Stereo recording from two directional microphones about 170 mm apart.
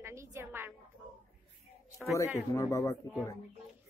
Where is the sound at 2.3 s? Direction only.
15° left (ahead or behind).